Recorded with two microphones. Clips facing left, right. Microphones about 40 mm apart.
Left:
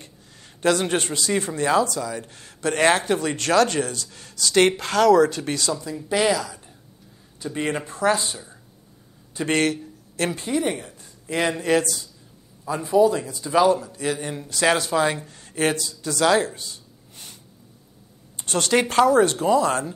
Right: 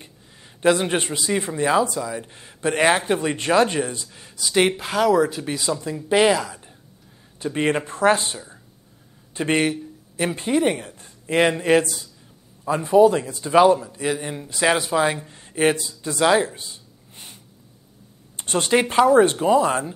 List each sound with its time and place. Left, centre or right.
0.6 s speech: centre
6.0 s a man's voice: right
9.6 s a sound: centre
10.3 s speech: right
14.0 s speech: centre
18.4 s a sound: right
18.7 s speech: centre